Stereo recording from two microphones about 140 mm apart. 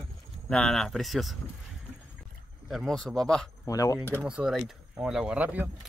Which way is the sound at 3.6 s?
25° left (ahead or behind).